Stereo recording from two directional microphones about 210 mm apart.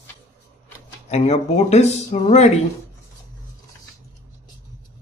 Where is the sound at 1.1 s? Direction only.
35° left (ahead or behind).